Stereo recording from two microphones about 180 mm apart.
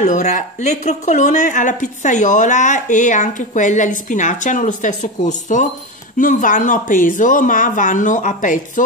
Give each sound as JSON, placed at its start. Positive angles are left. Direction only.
{"t": 0.0, "sound": "speech", "side_deg": 40}